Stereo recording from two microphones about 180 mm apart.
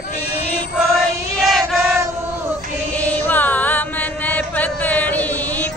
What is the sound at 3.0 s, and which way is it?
Music, 10° left (ahead or behind).